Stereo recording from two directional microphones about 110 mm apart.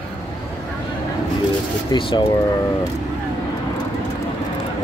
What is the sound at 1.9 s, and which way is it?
Speech, 45° left (ahead or behind).